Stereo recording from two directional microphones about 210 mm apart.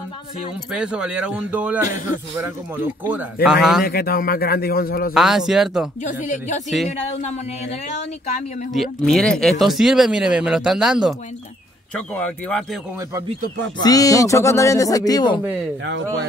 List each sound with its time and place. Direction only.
0.7 s speech: 5° right (ahead or behind)
3.8 s a man's voice: 45° left (ahead or behind)
5.1 s speech: centre (ahead or behind)
6.0 s speech: 35° left (ahead or behind)
8.7 s speech: centre (ahead or behind)
13.8 s speech: 15° left (ahead or behind)